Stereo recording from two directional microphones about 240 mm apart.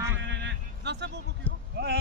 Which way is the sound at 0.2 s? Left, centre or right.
Right.